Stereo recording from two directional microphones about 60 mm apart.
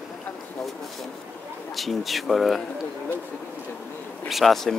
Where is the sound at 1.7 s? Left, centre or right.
Centre.